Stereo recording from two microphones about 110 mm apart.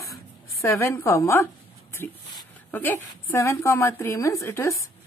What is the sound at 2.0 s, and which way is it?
A woman's voice, 20° left (ahead or behind).